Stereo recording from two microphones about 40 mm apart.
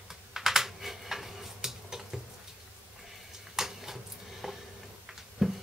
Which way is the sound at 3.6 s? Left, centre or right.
Centre.